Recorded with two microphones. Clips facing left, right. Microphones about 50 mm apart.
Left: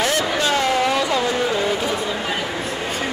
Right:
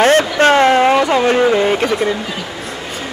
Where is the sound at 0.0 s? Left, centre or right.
Right.